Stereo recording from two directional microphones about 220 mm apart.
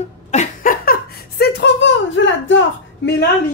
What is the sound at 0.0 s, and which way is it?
Chuckle, 30° left (ahead or behind).